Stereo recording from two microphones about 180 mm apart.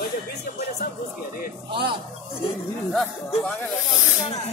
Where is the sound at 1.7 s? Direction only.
30° right (ahead or behind).